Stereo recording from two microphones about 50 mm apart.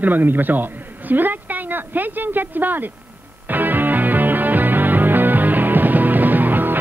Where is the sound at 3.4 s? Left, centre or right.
Right.